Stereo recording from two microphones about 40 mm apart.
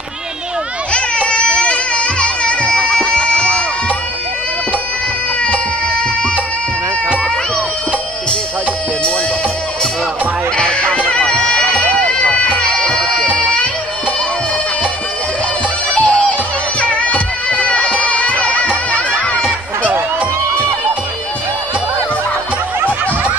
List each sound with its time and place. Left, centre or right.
0.9 s music: left
10.6 s music: left
15.9 s music: left